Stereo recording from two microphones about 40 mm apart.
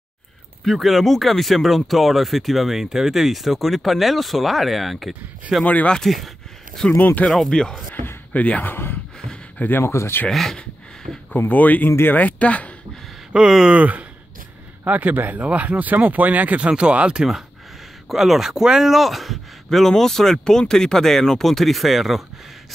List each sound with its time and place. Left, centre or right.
0.7 s speech: centre
7.0 s speech: left
7.4 s speech: centre
7.9 s speech: left
8.3 s speech: left
8.6 s speech: left
10.3 s speech: centre
11.3 s speech: left
13.3 s speech: right
14.9 s speech: right
16.7 s speech: right
18.1 s speech: centre